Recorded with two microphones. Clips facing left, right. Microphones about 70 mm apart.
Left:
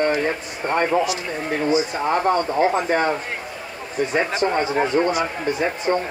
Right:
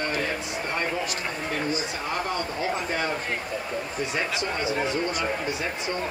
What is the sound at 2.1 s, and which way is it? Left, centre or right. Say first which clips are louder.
Speech: left 11 dB; left.